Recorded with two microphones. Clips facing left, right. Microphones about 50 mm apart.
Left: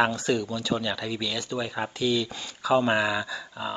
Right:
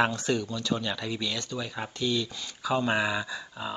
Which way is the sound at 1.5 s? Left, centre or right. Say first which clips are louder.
Left 5 dB; centre.